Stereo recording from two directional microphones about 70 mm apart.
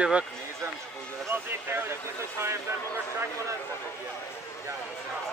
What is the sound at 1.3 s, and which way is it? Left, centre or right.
Speech, right.